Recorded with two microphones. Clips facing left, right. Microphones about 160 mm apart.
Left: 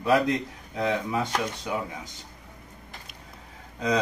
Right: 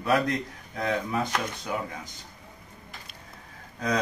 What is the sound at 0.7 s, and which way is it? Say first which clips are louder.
Speech: left 1 dB; 20° left (ahead or behind).